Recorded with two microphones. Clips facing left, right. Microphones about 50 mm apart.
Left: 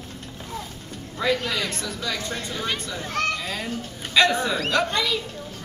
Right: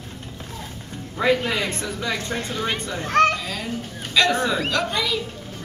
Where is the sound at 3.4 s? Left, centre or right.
Centre.